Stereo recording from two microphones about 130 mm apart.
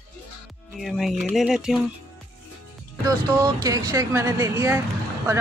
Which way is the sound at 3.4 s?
30° right (ahead or behind).